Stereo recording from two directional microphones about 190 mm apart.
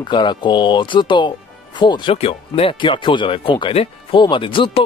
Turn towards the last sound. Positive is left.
turn(degrees=25)  # may be behind; listen again after turning